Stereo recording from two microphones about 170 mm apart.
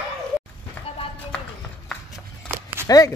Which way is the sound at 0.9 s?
35° left (ahead or behind).